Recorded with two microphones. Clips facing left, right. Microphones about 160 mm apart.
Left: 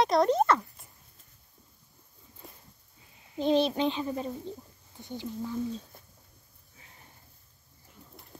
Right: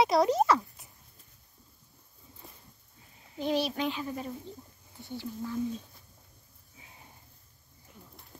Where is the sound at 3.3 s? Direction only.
25° left (ahead or behind).